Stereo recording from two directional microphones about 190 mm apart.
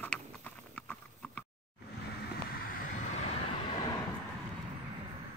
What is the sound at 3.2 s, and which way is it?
Vehicle, 30° left (ahead or behind).